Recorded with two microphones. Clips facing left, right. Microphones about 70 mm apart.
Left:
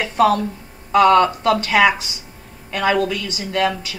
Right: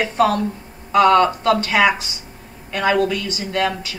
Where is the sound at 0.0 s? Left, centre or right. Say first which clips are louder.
Left 1 dB; right.